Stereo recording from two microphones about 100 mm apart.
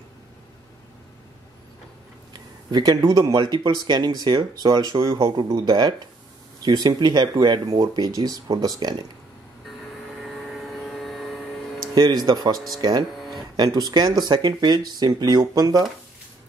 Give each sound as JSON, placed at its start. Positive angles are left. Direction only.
{"t": 2.3, "sound": "speech", "side_deg": -45}
{"t": 10.2, "sound": "vehicle", "side_deg": 0}
{"t": 11.9, "sound": "speech", "side_deg": -45}
{"t": 12.5, "sound": "speech", "side_deg": 0}
{"t": 13.7, "sound": "speech", "side_deg": -40}